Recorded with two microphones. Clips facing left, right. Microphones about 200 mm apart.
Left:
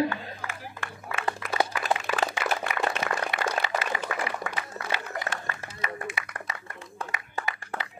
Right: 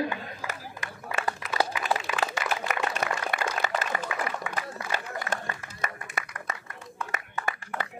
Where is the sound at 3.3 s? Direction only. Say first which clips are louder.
Even; 50° right (ahead or behind).